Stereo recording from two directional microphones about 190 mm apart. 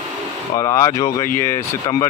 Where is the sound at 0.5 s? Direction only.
15° left (ahead or behind).